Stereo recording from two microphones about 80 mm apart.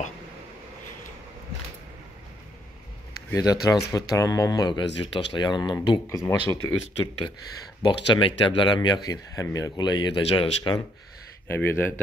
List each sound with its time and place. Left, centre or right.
3.3 s speech: left
6.0 s speech: left
7.8 s speech: left
9.8 s speech: left
11.4 s speech: left